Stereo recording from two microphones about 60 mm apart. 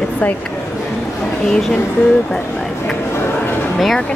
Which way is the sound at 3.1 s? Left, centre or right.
Left.